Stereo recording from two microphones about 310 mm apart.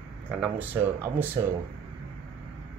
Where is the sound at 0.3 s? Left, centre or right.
Centre.